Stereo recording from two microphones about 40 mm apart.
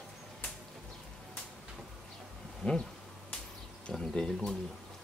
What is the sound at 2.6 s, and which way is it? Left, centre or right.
Speech, left.